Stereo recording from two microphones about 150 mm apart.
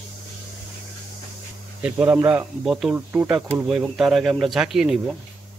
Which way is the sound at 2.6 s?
5° right (ahead or behind).